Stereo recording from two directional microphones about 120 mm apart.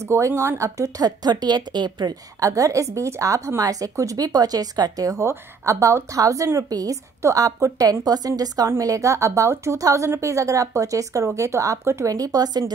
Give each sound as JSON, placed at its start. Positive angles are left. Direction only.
{"t": 0.1, "sound": "speech", "side_deg": -20}